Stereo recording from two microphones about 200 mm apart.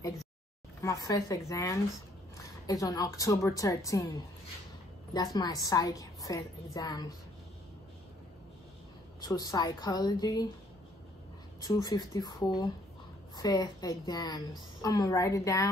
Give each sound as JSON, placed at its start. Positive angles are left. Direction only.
{"t": 0.7, "sound": "a woman's voice", "side_deg": 15}
{"t": 9.2, "sound": "a woman's voice", "side_deg": 20}
{"t": 11.6, "sound": "a woman's voice", "side_deg": 20}